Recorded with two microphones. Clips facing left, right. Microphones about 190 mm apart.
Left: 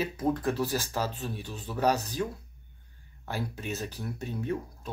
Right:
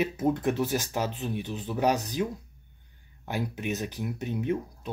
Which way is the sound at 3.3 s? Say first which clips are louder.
Right 3 dB; 15° right (ahead or behind).